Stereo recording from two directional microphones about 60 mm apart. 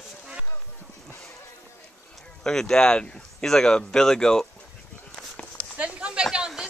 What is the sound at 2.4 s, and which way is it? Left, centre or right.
Speech, centre.